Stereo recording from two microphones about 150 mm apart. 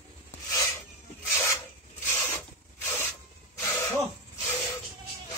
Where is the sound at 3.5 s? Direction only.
20° left (ahead or behind).